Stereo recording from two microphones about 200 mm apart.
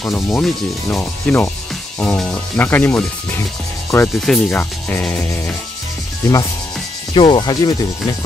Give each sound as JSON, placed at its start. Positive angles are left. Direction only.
{"t": 0.0, "sound": "speech", "side_deg": 5}
{"t": 7.2, "sound": "speech", "side_deg": 25}